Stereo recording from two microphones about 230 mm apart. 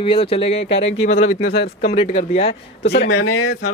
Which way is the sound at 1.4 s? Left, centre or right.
Left.